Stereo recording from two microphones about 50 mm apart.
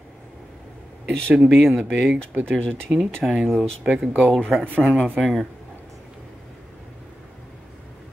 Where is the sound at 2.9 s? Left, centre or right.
Right.